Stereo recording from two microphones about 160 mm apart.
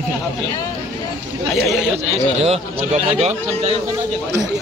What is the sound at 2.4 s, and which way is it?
A man's voice, 40° right (ahead or behind).